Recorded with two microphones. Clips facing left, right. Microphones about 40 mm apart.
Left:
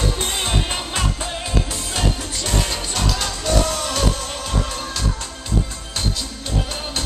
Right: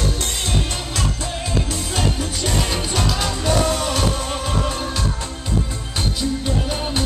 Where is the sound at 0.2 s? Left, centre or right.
Left.